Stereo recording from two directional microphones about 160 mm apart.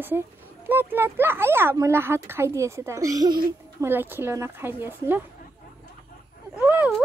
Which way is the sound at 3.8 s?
15° right (ahead or behind).